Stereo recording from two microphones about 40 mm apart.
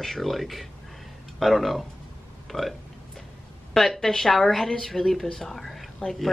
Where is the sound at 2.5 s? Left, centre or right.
Left.